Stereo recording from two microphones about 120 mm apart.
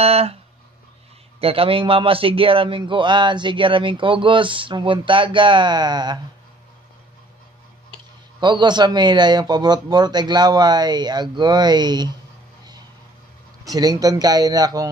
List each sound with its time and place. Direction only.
0.0 s speech: 55° right (ahead or behind)
1.4 s speech: 50° right (ahead or behind)
8.4 s a man's voice: 40° right (ahead or behind)
13.7 s a man's voice: 30° right (ahead or behind)